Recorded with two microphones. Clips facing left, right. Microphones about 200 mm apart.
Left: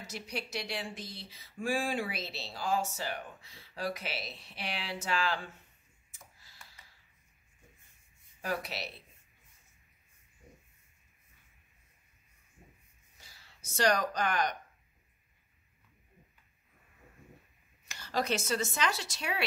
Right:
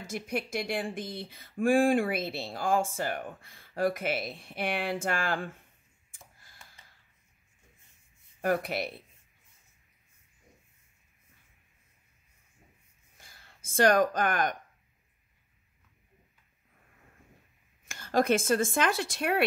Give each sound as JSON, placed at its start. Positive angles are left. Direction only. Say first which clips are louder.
{"t": 0.0, "sound": "speech", "louder": "right 7 dB", "side_deg": -50}
{"t": 6.4, "sound": "a sound", "louder": "right 1 dB", "side_deg": -50}
{"t": 8.4, "sound": "speech", "louder": "right 8 dB", "side_deg": -55}
{"t": 13.2, "sound": "speech", "louder": "right 2 dB", "side_deg": -50}
{"t": 17.8, "sound": "speech", "louder": "right 7 dB", "side_deg": -50}